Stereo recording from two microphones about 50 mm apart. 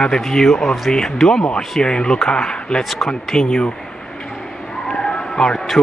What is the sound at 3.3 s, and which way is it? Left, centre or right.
Speech, centre.